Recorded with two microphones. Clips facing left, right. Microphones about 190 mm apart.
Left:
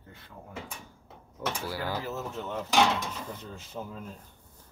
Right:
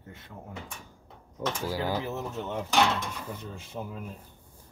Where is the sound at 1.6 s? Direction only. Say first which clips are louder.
Right 6 dB; 15° right (ahead or behind).